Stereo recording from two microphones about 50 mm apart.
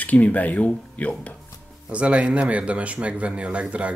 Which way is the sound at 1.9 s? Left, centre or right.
Right.